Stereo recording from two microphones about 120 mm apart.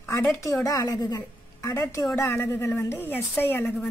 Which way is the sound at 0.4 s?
25° left (ahead or behind).